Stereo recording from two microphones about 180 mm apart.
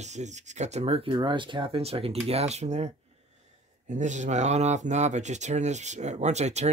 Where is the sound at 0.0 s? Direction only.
40° right (ahead or behind).